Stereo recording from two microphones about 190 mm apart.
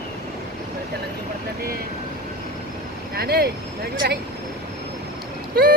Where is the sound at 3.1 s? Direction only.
55° right (ahead or behind).